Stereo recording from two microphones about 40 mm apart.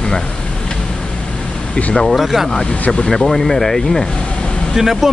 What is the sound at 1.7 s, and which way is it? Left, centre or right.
Speech, centre.